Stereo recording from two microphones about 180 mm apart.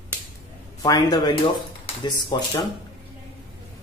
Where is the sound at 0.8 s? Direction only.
20° left (ahead or behind).